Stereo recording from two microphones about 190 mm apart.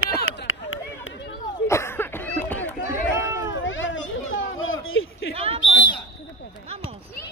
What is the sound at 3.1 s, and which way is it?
Run, 15° right (ahead or behind).